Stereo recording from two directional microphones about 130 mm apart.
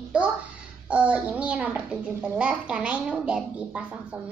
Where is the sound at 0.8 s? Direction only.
10° right (ahead or behind).